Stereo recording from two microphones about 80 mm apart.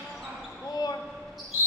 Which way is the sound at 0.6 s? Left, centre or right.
Left.